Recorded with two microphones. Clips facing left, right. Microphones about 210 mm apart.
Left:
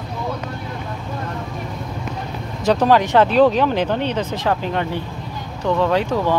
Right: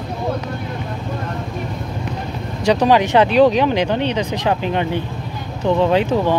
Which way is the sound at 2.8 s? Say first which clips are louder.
Right 1 dB; 15° right (ahead or behind).